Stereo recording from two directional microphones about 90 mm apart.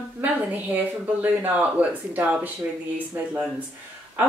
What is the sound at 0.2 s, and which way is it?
Speech, 20° right (ahead or behind).